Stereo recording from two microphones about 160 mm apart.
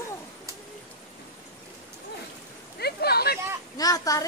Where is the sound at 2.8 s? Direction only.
80° left.